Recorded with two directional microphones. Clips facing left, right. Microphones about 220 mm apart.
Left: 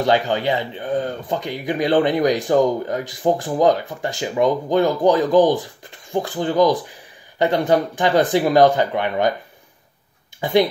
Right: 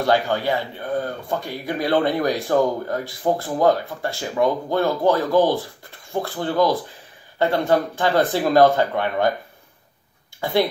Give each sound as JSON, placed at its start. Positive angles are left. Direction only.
{"t": 0.0, "sound": "speech", "side_deg": 20}
{"t": 10.4, "sound": "speech", "side_deg": 20}